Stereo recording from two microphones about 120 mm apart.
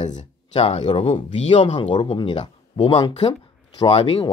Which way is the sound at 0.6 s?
55° left (ahead or behind).